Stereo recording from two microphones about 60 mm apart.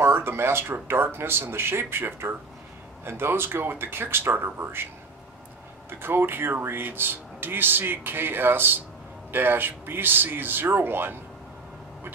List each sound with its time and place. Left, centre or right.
0.0 s a sound: right
0.8 s speech: right
5.9 s speech: right